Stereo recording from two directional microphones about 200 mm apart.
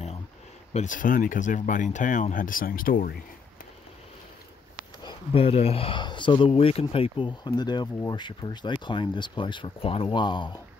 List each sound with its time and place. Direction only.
0.7 s speech: 40° left (ahead or behind)
5.0 s speech: 30° left (ahead or behind)